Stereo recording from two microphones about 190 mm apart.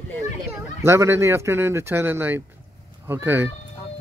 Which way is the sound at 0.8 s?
15° right (ahead or behind).